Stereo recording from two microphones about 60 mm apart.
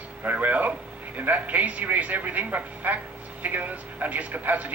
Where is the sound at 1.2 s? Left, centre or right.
Right.